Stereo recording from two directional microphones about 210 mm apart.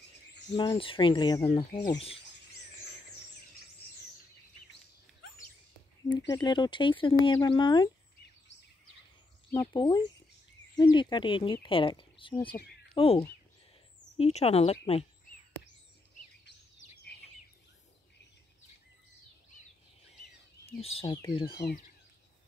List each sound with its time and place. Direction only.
0.6 s speech: 25° left (ahead or behind)
6.3 s speech: 20° left (ahead or behind)
9.5 s speech: 15° left (ahead or behind)
20.6 s speech: 30° left (ahead or behind)